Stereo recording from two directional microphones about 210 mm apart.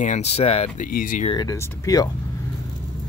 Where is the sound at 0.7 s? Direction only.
40° left (ahead or behind).